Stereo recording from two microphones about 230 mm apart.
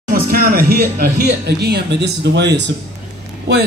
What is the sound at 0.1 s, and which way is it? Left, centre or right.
Speech, right.